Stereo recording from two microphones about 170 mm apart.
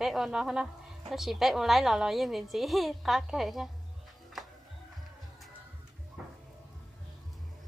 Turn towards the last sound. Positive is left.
turn(degrees=-5)  # may be behind; listen again after turning